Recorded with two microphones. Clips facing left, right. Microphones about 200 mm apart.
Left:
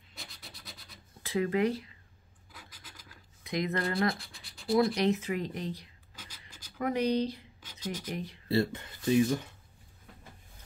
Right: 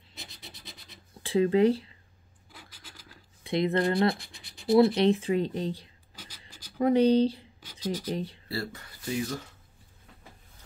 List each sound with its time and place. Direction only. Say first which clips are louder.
0.2 s scratch: right 2 dB; 20° right (ahead or behind)
1.2 s speech: right 6 dB; 30° right (ahead or behind)
2.5 s scratch: right 2 dB; 30° right (ahead or behind)
4.6 s speech: right 5 dB; 25° right (ahead or behind)
8.5 s speech: left 6 dB; 25° left (ahead or behind)